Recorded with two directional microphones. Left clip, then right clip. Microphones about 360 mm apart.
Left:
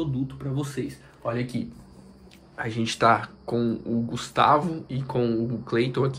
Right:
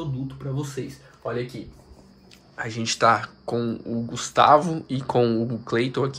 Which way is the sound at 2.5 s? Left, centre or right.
Centre.